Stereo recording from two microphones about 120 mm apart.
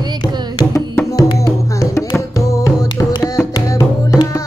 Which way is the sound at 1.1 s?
30° left (ahead or behind).